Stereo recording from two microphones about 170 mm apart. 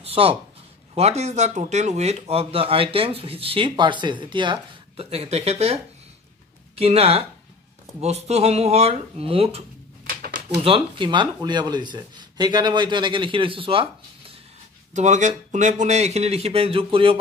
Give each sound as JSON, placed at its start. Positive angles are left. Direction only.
{"t": 0.0, "sound": "speech", "side_deg": -35}
{"t": 10.0, "sound": "a sound", "side_deg": -60}
{"t": 10.5, "sound": "speech", "side_deg": -35}
{"t": 15.0, "sound": "speech", "side_deg": -45}